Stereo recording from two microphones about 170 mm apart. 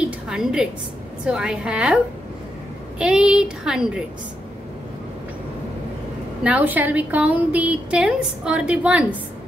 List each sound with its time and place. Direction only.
0.3 s speech: 5° right (ahead or behind)
3.0 s speech: 5° right (ahead or behind)
6.4 s a woman's voice: 10° right (ahead or behind)